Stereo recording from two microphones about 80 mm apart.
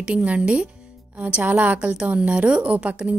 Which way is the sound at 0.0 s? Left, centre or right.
Centre.